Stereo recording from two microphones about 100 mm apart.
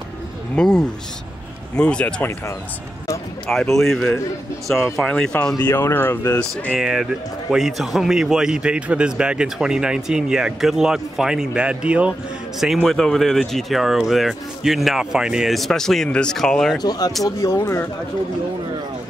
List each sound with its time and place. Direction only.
0.6 s speech: 5° left (ahead or behind)
3.4 s speech: 5° left (ahead or behind)
5.8 s speech: 20° left (ahead or behind)
6.7 s a man's voice: 5° right (ahead or behind)
12.5 s speech: centre (ahead or behind)
16.8 s speech: 40° left (ahead or behind)
17.2 s speech: 30° left (ahead or behind)